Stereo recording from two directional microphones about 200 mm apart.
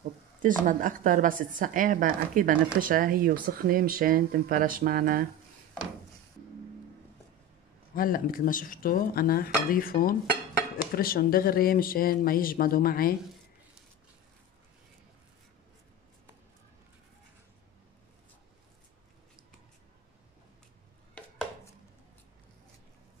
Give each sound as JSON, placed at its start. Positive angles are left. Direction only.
{"t": 0.4, "sound": "a woman's voice", "side_deg": -40}
{"t": 7.9, "sound": "speech", "side_deg": 45}